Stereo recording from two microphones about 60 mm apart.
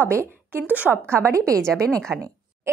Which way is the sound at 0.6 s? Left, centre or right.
Right.